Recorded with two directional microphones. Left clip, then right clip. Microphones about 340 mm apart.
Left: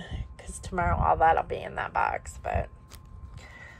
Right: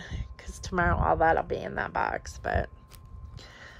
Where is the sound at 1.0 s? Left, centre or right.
Right.